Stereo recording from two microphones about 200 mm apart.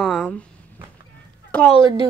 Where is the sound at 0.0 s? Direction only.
5° left (ahead or behind).